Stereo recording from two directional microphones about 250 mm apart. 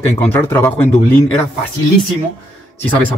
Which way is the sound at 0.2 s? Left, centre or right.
Centre.